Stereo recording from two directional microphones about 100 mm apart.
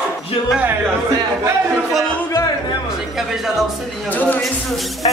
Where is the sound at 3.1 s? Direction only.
Centre (ahead or behind).